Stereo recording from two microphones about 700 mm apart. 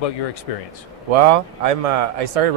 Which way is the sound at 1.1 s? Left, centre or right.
Right.